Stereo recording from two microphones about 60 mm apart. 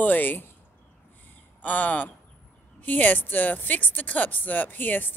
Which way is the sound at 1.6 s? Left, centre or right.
Left.